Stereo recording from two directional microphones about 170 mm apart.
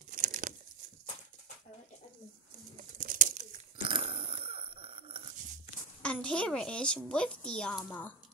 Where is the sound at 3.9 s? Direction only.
30° right (ahead or behind).